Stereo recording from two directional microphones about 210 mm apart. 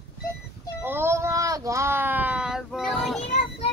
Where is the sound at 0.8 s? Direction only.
10° right (ahead or behind).